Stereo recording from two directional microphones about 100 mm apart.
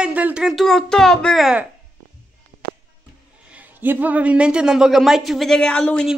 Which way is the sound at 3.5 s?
15° right (ahead or behind).